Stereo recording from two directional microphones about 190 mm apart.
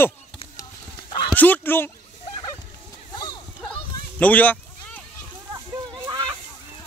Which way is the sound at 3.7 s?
5° left (ahead or behind).